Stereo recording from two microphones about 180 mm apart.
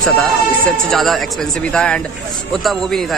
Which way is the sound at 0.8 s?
Centre (ahead or behind).